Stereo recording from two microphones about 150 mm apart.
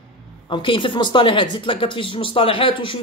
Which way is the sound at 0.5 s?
35° left (ahead or behind).